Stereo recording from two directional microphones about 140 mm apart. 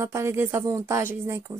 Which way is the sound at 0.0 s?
20° right (ahead or behind).